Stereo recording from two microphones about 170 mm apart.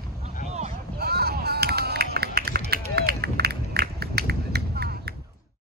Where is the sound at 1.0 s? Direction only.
70° right (ahead or behind).